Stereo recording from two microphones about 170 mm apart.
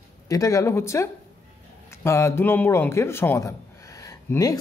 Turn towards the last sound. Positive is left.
turn(degrees=20)  # may be behind; listen again after turning